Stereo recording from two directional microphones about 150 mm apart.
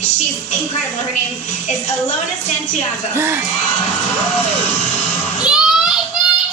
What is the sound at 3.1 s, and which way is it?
Speech, 15° right (ahead or behind).